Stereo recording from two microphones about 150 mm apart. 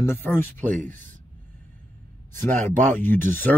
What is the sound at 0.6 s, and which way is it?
Speech, 60° right (ahead or behind).